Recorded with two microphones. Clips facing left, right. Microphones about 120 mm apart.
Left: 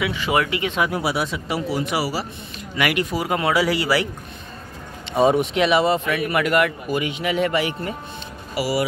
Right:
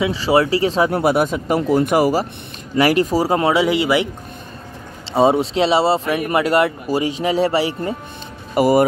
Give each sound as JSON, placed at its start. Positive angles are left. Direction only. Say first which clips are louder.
{"t": 0.0, "sound": "speech", "louder": "right 6 dB", "side_deg": -30}
{"t": 2.7, "sound": "speech", "louder": "right 7 dB", "side_deg": -35}
{"t": 5.1, "sound": "speech", "louder": "right 3 dB", "side_deg": -25}
{"t": 8.5, "sound": "speech", "louder": "right 9 dB", "side_deg": -50}